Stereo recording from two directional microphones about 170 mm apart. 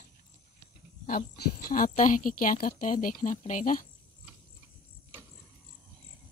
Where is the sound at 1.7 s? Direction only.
50° left (ahead or behind).